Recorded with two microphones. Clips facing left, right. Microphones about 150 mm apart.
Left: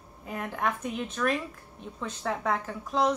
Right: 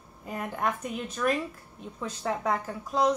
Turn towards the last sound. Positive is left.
turn(degrees=0)  # may be behind; listen again after turning